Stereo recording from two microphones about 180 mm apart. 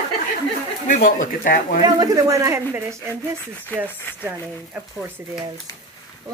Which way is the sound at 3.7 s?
10° left (ahead or behind).